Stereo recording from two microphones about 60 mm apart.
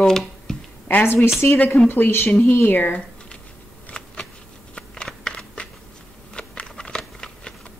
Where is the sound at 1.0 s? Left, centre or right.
Left.